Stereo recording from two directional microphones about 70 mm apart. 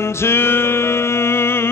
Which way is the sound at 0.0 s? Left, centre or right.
Left.